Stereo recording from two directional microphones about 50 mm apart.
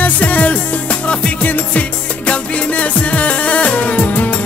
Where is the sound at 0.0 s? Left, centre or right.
Left.